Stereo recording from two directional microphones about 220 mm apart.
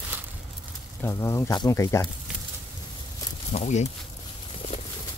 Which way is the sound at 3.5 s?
30° left (ahead or behind).